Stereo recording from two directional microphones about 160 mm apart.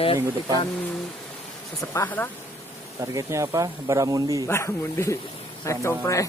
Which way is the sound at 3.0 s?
20° right (ahead or behind).